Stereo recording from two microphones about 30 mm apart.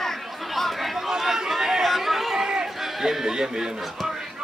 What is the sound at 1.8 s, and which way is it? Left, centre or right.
Chatter, centre.